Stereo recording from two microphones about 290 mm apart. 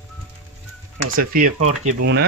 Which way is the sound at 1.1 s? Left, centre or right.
Right.